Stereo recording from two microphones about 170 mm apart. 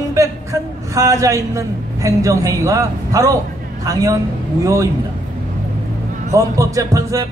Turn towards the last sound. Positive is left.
turn(degrees=-20)  # may be behind; listen again after turning